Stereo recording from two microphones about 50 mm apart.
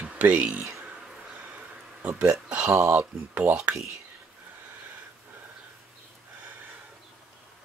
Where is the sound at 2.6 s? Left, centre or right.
Right.